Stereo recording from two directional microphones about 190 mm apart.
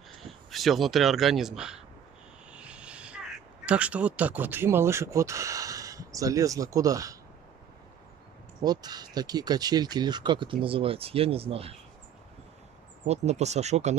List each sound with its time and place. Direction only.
0.5 s speech: centre (ahead or behind)
2.5 s vehicle: 5° right (ahead or behind)
3.6 s speech: 5° right (ahead or behind)
8.6 s speech: 20° right (ahead or behind)
13.0 s speech: 35° right (ahead or behind)